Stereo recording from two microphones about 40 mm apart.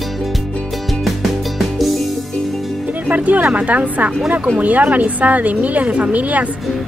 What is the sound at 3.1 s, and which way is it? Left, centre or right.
Speech, right.